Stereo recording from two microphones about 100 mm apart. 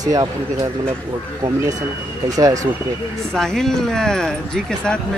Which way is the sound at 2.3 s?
35° right (ahead or behind).